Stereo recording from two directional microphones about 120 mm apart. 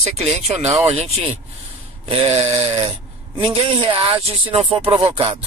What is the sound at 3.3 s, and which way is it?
Speech, 45° right (ahead or behind).